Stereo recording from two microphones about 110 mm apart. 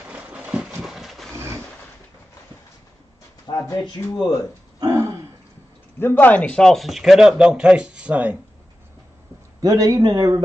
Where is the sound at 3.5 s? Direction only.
40° left (ahead or behind).